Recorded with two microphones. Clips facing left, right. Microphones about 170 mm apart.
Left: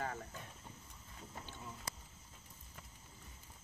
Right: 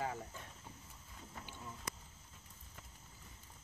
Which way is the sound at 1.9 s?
30° left (ahead or behind).